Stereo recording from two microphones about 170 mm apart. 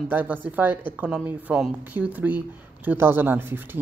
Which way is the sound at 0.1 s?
10° right (ahead or behind).